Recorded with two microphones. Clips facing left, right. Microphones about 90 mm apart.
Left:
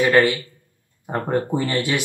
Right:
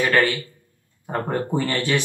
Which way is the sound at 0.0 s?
20° left (ahead or behind).